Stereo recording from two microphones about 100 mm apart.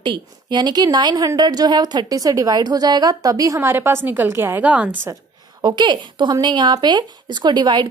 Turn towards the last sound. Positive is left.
turn(degrees=-45)  # may be behind; listen again after turning